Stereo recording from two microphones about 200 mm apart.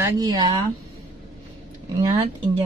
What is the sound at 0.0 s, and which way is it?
Speech, 20° right (ahead or behind).